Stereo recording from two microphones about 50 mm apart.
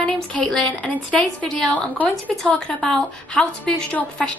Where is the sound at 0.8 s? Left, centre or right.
Left.